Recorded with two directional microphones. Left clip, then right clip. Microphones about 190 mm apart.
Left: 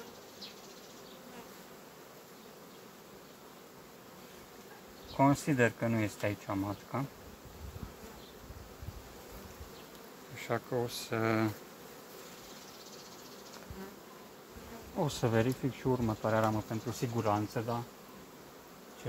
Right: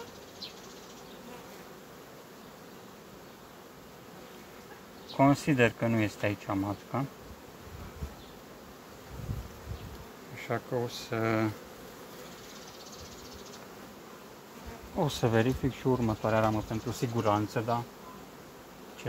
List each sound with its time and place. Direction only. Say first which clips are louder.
5.1 s speech: right 3 dB; 10° left (ahead or behind)
10.3 s bee: right 2 dB; 35° left (ahead or behind)
15.0 s speech: right 3 dB; 10° left (ahead or behind)